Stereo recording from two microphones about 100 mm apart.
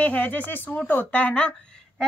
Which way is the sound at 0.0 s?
15° left (ahead or behind).